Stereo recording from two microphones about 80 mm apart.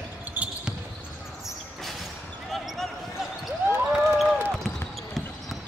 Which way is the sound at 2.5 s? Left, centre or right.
Centre.